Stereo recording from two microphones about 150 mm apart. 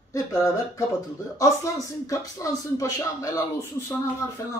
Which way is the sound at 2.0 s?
20° left (ahead or behind).